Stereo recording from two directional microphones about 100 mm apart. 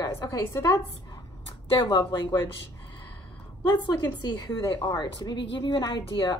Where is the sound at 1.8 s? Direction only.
45° left (ahead or behind).